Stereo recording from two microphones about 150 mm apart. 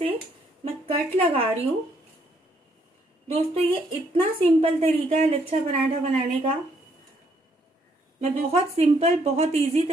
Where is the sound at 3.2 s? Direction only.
40° right (ahead or behind).